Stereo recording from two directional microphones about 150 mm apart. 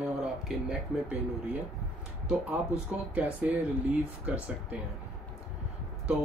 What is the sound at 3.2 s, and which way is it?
Speech, 10° right (ahead or behind).